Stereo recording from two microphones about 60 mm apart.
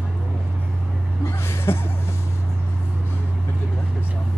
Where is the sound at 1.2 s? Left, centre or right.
Left.